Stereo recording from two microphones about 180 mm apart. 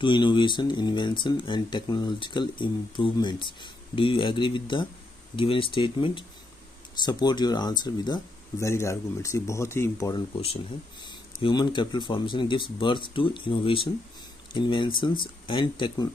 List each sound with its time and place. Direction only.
0.0 s speech: 25° left (ahead or behind)